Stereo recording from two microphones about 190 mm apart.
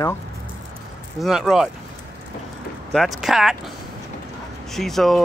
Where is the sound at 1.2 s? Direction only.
Centre (ahead or behind).